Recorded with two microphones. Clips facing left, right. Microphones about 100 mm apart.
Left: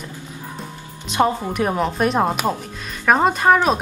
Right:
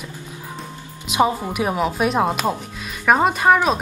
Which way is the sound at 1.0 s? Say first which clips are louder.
Even; 5° right (ahead or behind).